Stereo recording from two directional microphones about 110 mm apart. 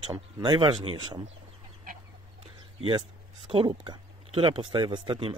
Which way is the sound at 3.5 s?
50° right (ahead or behind).